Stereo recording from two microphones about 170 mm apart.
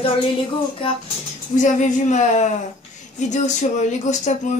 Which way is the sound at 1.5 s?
45° left (ahead or behind).